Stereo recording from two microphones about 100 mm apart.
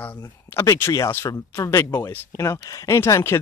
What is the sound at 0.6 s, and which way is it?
Speech, 30° left (ahead or behind).